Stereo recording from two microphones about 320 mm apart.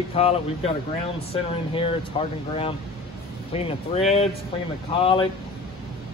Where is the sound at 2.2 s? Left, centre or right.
Centre.